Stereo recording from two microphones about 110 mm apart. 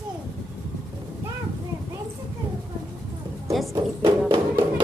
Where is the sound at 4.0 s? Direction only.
45° right (ahead or behind).